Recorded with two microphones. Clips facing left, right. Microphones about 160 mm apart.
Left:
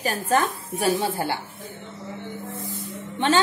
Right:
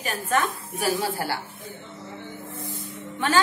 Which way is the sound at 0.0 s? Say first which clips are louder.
Left 3 dB; 35° left (ahead or behind).